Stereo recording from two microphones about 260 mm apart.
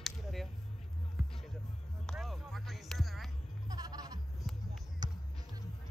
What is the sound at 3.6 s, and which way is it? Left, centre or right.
Music, centre.